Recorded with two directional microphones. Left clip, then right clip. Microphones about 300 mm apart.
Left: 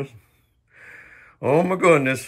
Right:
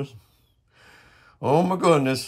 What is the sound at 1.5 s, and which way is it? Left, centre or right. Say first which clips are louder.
Speech: left 3 dB; right.